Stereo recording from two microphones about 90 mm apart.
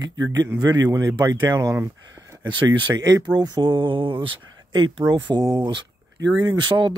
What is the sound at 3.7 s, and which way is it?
Speech, 65° right (ahead or behind).